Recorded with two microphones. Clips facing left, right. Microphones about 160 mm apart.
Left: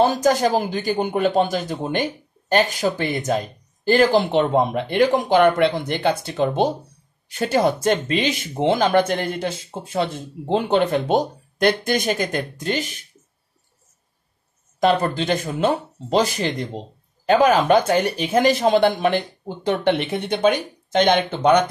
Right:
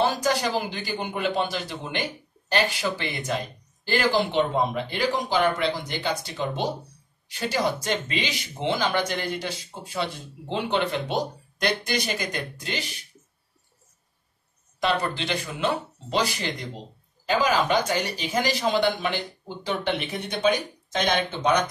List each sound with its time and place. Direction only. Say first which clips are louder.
0.0 s speech: left 7 dB; 45° left (ahead or behind)
14.8 s speech: left 7 dB; 50° left (ahead or behind)
21.3 s speech: left 7 dB; 55° left (ahead or behind)